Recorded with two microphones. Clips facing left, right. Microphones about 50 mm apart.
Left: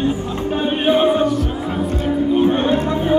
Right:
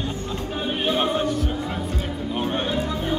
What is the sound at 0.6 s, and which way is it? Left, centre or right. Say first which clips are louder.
Opera: left 7 dB; left.